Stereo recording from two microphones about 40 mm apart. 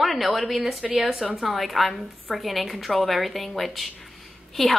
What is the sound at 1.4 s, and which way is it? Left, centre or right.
A woman's voice, centre.